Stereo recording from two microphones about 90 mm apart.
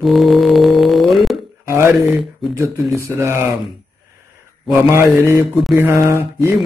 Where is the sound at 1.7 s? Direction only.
30° right (ahead or behind).